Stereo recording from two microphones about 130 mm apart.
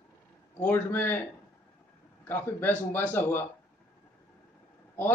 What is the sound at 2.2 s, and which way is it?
Speech, 15° left (ahead or behind).